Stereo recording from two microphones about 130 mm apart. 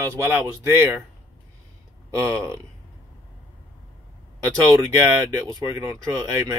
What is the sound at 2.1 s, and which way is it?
Speech, 20° right (ahead or behind).